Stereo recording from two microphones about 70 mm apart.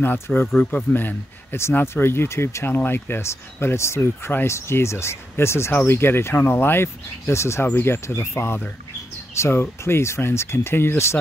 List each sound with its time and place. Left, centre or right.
0.0 s speech: left
2.7 s speech: left